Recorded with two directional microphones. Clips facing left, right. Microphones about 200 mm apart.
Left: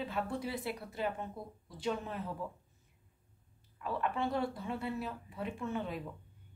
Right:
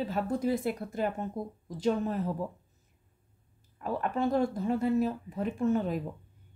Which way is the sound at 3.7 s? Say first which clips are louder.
Right 4 dB; 45° right (ahead or behind).